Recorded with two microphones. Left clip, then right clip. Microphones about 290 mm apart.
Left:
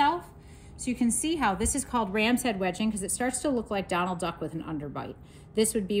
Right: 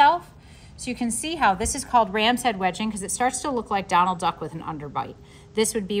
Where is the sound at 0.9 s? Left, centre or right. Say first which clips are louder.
Right 1 dB; right.